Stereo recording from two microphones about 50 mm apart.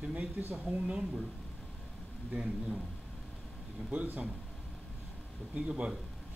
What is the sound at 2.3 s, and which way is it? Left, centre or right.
Speech, right.